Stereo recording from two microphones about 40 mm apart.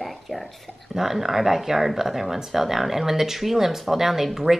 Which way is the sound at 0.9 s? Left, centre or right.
Centre.